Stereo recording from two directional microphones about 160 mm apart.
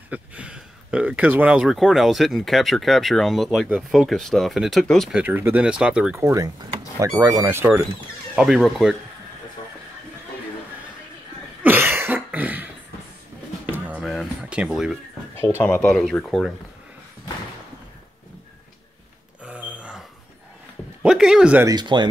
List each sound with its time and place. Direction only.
0.1 s speech: 10° right (ahead or behind)
5.2 s speech: 10° right (ahead or behind)
6.1 s speech: 20° right (ahead or behind)
8.4 s speech: centre (ahead or behind)
11.6 s cough: 15° right (ahead or behind)
13.7 s a sound: 10° right (ahead or behind)
15.3 s speech: 15° left (ahead or behind)
19.4 s a sound: 10° right (ahead or behind)
21.0 s a sound: 5° right (ahead or behind)
21.6 s speech: 30° right (ahead or behind)